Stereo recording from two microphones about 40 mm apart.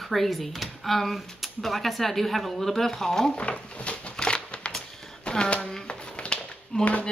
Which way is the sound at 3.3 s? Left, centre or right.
Left.